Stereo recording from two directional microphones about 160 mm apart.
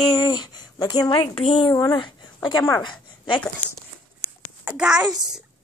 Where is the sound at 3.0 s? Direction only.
30° left (ahead or behind).